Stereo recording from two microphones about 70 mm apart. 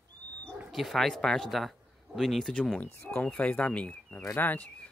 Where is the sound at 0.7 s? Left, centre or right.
Centre.